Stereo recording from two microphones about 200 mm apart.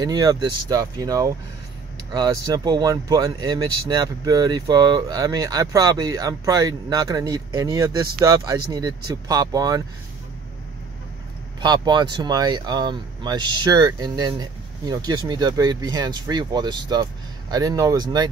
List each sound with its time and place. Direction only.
0.0 s speech: 20° right (ahead or behind)
11.6 s speech: 20° right (ahead or behind)